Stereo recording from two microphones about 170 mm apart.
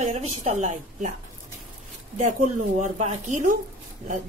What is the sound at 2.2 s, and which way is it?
A woman's voice, 45° right (ahead or behind).